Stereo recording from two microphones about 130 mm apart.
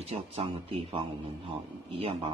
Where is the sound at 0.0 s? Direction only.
50° right (ahead or behind).